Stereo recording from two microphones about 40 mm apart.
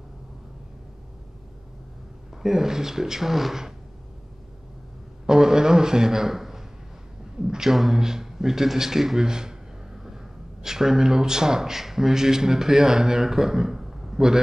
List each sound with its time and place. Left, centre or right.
2.3 s speech: centre
5.2 s a sound: centre
7.7 s a man's voice: centre